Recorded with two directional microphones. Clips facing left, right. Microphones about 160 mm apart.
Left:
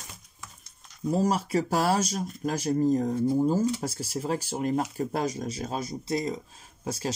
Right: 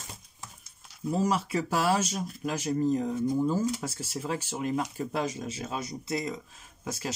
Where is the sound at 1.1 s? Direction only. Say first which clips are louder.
Left 2 dB; 35° left (ahead or behind).